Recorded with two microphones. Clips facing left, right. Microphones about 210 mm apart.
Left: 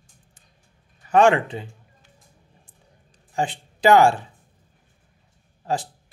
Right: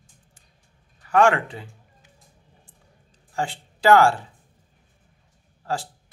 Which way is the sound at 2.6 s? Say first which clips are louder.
Left 1 dB; 20° left (ahead or behind).